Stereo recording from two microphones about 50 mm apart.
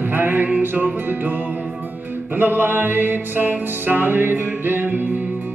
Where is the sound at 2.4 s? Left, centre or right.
Right.